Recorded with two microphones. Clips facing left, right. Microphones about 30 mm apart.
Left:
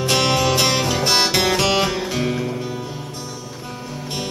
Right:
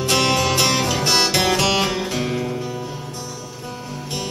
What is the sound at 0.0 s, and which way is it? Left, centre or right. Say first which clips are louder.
Music: even; centre.